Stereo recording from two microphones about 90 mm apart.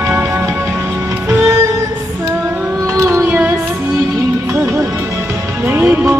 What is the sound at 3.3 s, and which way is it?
Music, 20° right (ahead or behind).